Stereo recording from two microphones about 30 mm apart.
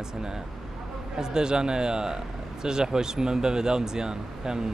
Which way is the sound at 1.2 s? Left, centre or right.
Right.